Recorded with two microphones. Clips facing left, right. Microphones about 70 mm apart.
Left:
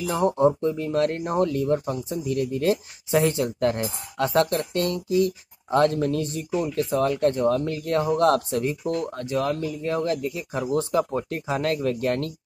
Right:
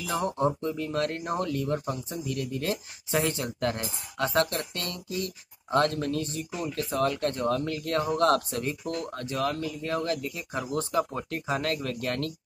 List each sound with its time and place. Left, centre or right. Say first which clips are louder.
0.1 s speech: left 6 dB; left
0.6 s speech: left 6 dB; left
9.5 s speech: left 4 dB; left